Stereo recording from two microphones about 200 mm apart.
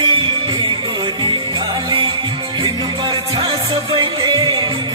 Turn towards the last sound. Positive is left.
turn(degrees=-20)  # may be behind; listen again after turning